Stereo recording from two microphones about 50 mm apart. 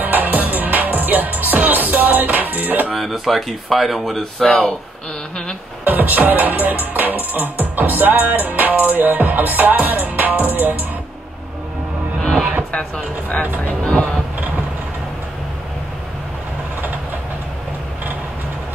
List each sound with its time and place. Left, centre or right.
0.0 s music: right
2.9 s speech: centre
5.9 s music: right
12.7 s speech: left